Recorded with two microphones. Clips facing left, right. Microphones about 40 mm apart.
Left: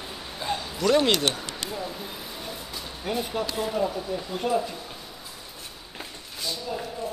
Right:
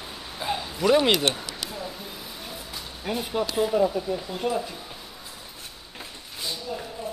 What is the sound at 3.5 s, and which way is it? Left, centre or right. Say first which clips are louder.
Speech: right 6 dB; centre.